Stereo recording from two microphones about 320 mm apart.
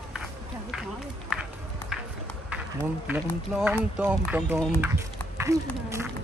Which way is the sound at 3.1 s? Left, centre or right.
Centre.